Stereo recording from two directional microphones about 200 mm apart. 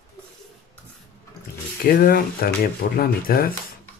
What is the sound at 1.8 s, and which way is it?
Speech, 45° left (ahead or behind).